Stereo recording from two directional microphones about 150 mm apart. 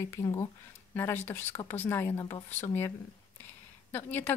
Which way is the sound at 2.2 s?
25° left (ahead or behind).